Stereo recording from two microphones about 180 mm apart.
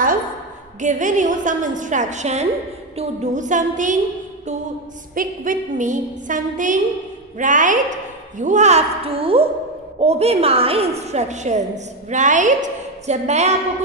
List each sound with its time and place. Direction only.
0.7 s a woman's voice: 45° right (ahead or behind)
5.1 s a woman's voice: 50° right (ahead or behind)